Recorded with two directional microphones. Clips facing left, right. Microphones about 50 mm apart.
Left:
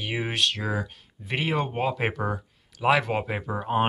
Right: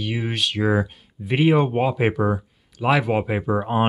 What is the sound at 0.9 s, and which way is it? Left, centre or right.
Speech, centre.